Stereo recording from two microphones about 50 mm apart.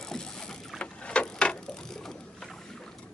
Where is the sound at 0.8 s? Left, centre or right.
Left.